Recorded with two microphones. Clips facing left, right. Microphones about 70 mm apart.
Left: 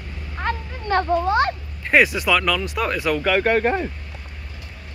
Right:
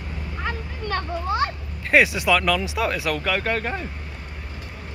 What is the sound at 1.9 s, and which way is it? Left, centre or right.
Speech, centre.